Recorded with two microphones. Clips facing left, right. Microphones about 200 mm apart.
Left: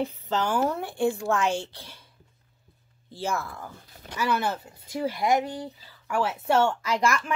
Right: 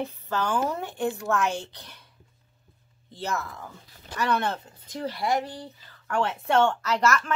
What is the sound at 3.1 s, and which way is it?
A woman's voice, 10° left (ahead or behind).